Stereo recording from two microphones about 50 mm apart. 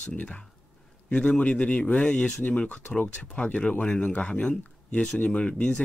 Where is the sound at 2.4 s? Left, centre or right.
Left.